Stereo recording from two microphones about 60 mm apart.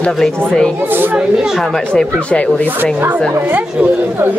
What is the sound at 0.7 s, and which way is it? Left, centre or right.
Speech, right.